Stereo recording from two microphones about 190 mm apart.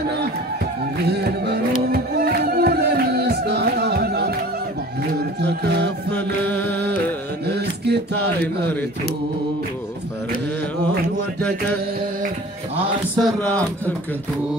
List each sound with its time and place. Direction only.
1.9 s music: 55° right (ahead or behind)
5.4 s music: 60° right (ahead or behind)
7.4 s a sound: 60° right (ahead or behind)
13.2 s speech: 5° left (ahead or behind)